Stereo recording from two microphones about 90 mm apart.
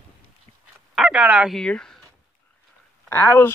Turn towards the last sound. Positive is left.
turn(degrees=30)  # may be behind; listen again after turning